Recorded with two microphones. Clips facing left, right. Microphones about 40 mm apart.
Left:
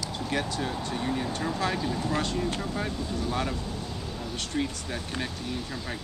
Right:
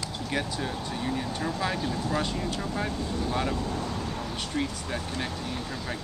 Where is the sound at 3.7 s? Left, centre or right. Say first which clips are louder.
Right 4 dB; right.